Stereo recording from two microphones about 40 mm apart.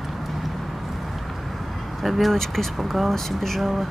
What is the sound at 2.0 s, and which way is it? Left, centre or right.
Speech, centre.